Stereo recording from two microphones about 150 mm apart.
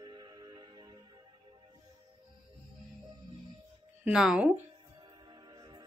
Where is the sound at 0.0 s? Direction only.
30° right (ahead or behind).